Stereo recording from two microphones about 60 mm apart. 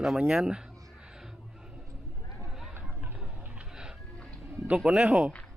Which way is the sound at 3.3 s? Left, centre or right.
Right.